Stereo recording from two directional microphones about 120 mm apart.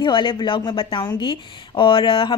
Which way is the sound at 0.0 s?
45° left (ahead or behind).